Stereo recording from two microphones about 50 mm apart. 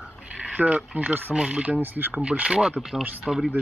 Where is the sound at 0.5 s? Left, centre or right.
Right.